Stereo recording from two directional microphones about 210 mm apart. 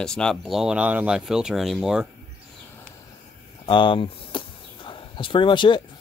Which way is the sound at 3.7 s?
25° left (ahead or behind).